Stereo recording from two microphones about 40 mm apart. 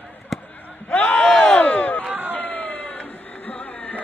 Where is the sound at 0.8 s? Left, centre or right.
Left.